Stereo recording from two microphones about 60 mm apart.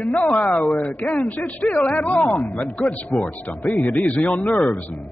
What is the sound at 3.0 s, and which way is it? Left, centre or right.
Speech, left.